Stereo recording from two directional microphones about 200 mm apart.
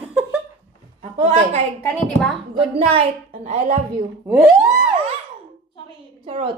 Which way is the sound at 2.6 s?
30° right (ahead or behind).